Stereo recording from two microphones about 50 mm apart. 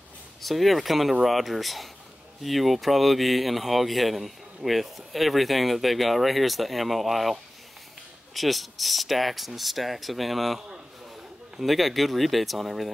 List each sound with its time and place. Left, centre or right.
0.4 s speech: centre
8.4 s speech: centre